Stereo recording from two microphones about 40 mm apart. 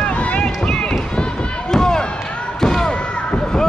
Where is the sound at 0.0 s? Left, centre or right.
Left.